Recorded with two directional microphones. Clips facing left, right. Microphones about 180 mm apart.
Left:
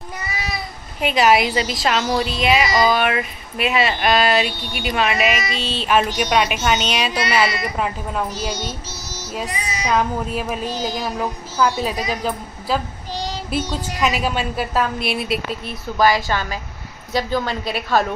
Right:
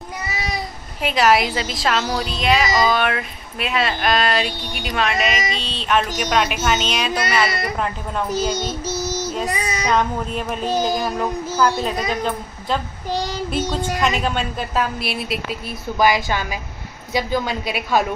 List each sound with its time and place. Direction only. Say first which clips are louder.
1.0 s a woman's voice: left 1 dB; centre (ahead or behind)
7.4 s speech: even; 55° right (ahead or behind)
9.8 s a woman's voice: left 1 dB; 5° left (ahead or behind)
16.0 s a woman's voice: left 1 dB; 15° right (ahead or behind)